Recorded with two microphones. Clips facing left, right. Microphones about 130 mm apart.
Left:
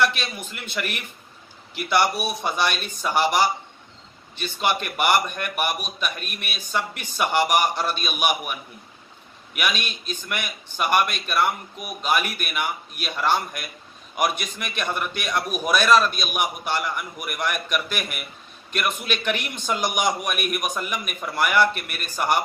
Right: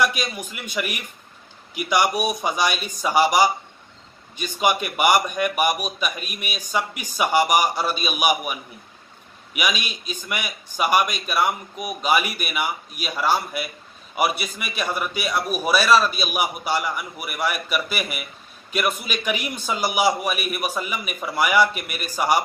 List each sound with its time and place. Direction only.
0.0 s a man's voice: 10° right (ahead or behind)